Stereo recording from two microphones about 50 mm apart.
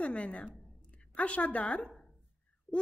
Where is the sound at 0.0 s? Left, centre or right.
Left.